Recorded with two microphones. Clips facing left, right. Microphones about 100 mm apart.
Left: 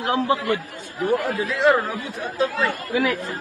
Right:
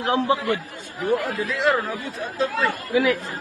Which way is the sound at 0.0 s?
20° right (ahead or behind).